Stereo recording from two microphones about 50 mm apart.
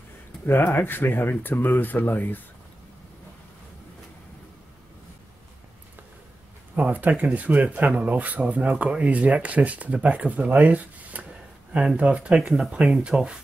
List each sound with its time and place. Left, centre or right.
0.5 s speech: left
6.7 s speech: right